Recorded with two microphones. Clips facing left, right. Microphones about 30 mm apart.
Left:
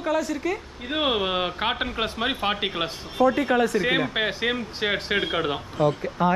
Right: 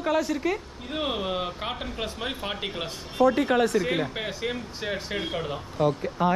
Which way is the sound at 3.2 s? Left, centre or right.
Left.